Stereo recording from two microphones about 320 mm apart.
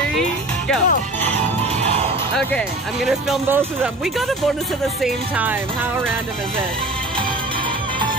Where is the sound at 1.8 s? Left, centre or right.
Centre.